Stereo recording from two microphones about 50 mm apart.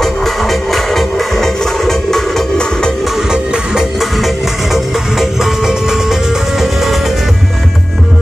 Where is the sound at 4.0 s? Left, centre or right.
Centre.